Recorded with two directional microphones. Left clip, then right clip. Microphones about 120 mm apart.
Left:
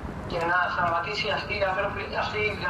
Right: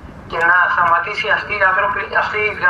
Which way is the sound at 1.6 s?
25° left (ahead or behind).